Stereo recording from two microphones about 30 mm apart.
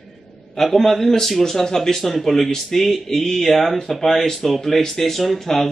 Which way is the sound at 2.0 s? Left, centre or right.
Centre.